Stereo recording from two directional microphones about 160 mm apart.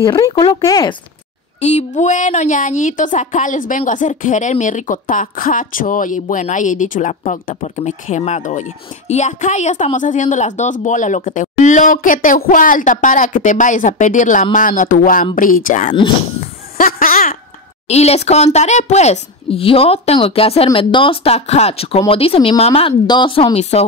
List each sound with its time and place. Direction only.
0.5 s speech: 25° left (ahead or behind)
1.6 s a woman's voice: 45° left (ahead or behind)
16.7 s a sound: 60° left (ahead or behind)
17.8 s speech: 40° left (ahead or behind)